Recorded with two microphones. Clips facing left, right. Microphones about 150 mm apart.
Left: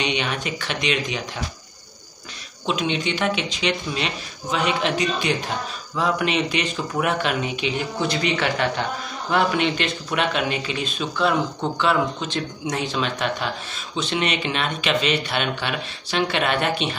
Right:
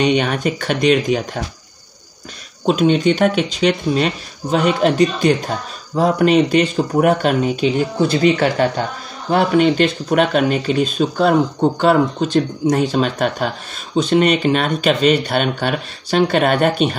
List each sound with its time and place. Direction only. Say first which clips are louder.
0.0 s speech: right 9 dB; 45° right (ahead or behind)
2.6 s speech: right 10 dB; 45° right (ahead or behind)